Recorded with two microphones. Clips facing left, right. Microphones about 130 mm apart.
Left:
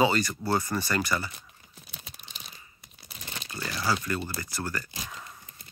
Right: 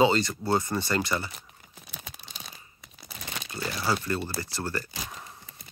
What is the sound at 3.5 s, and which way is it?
Speech, 25° right (ahead or behind).